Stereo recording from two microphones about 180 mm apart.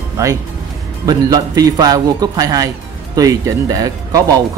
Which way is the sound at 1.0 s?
20° right (ahead or behind).